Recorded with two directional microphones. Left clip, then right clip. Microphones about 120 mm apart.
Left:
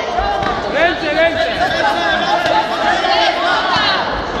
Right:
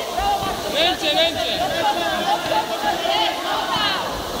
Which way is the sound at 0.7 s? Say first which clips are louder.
Left 3 dB; 20° right (ahead or behind).